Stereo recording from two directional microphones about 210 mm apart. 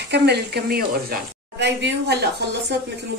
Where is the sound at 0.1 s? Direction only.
50° right (ahead or behind).